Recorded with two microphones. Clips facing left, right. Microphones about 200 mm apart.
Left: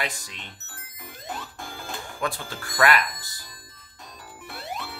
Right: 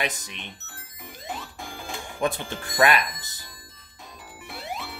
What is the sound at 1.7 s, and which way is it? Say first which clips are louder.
Music: right 1 dB; 5° left (ahead or behind).